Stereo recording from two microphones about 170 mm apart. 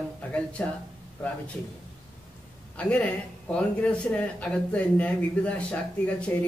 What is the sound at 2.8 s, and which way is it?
Speech, 10° left (ahead or behind).